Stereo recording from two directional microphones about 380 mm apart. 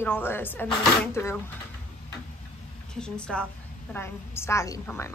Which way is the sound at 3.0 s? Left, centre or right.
Centre.